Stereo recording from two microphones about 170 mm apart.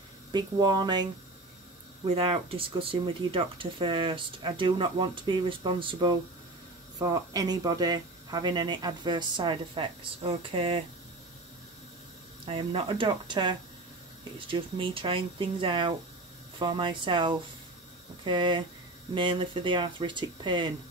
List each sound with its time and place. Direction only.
0.3 s speech: 25° right (ahead or behind)
2.0 s speech: 35° right (ahead or behind)
12.4 s speech: 30° right (ahead or behind)